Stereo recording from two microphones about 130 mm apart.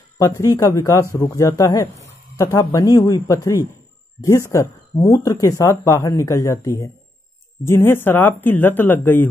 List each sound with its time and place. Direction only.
0.2 s speech: 25° left (ahead or behind)